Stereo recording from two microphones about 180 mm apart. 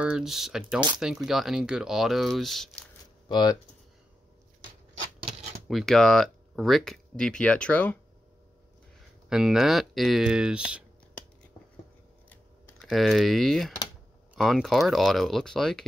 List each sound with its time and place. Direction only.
0.0 s speech: 5° right (ahead or behind)
3.3 s speech: 25° left (ahead or behind)
5.7 s speech: centre (ahead or behind)
9.3 s speech: 5° right (ahead or behind)
12.3 s typing: 10° left (ahead or behind)
12.9 s speech: centre (ahead or behind)